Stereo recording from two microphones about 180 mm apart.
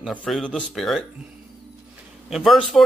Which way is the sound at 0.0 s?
Centre (ahead or behind).